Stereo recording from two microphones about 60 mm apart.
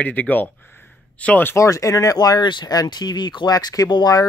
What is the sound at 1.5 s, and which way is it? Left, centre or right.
Speech, left.